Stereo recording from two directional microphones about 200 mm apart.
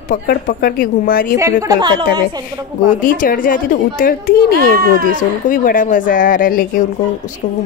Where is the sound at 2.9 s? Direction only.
45° left (ahead or behind).